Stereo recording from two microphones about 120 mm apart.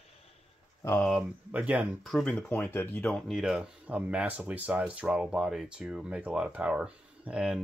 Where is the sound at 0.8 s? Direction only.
25° left (ahead or behind).